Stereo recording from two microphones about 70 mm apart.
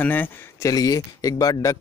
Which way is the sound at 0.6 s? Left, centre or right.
Left.